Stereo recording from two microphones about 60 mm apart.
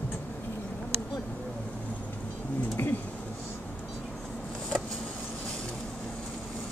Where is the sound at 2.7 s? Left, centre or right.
Left.